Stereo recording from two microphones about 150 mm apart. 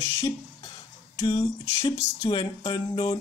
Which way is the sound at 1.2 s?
35° left (ahead or behind).